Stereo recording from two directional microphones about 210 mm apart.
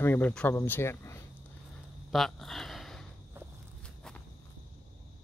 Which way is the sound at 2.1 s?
Centre (ahead or behind).